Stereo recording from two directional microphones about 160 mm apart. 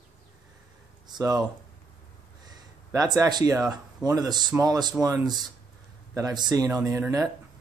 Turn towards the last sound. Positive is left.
turn(degrees=-15)  # may be behind; listen again after turning